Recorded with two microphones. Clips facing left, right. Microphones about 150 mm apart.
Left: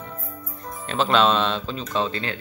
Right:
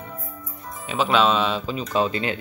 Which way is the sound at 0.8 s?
5° right (ahead or behind).